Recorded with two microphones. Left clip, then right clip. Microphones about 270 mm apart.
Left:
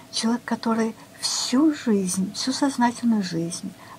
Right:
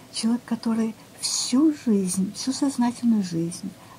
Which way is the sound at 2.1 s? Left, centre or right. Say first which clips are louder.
Left 2 dB; left.